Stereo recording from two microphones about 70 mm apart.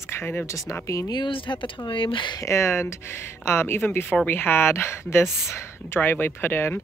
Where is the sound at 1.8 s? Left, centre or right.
Left.